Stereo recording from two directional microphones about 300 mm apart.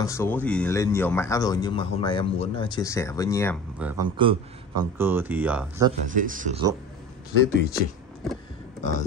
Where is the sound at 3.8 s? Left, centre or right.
Centre.